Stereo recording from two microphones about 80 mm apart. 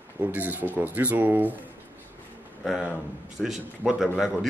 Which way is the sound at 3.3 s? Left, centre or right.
Centre.